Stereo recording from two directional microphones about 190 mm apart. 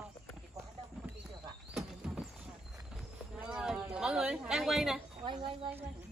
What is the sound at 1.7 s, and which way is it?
Horse, centre (ahead or behind).